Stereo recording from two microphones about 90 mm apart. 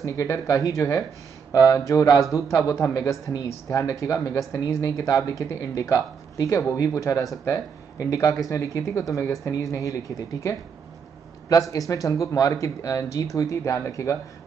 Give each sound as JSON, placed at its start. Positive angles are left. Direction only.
{"t": 0.0, "sound": "speech", "side_deg": 35}
{"t": 11.7, "sound": "speech", "side_deg": 40}